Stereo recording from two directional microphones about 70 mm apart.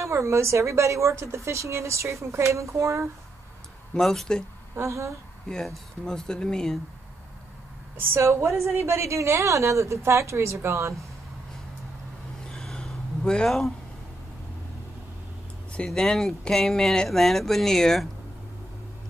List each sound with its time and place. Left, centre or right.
0.0 s a woman's voice: right
3.9 s speech: centre
4.7 s a woman's voice: right
5.5 s speech: centre
8.0 s a woman's voice: right
12.4 s a sound: centre
15.7 s speech: centre